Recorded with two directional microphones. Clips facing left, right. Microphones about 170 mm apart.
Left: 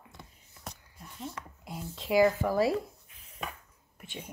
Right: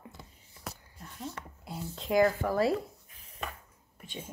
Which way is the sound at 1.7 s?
5° left (ahead or behind).